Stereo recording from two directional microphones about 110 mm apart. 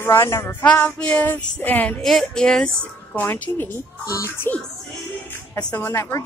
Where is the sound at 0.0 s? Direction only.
25° left (ahead or behind).